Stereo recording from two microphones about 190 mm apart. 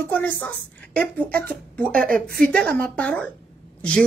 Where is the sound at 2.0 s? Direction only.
50° right (ahead or behind).